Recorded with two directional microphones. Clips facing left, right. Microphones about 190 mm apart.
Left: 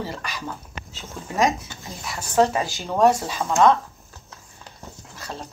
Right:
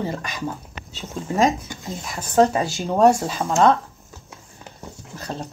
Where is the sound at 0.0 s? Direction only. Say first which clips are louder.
Right 4 dB; 20° right (ahead or behind).